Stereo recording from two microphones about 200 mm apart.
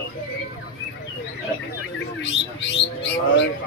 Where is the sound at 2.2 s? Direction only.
60° left (ahead or behind).